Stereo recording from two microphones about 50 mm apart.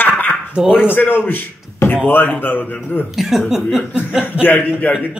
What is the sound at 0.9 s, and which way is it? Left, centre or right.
A man's voice, left.